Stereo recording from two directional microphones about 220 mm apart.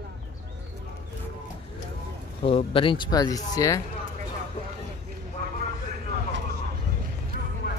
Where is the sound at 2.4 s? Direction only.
25° left (ahead or behind).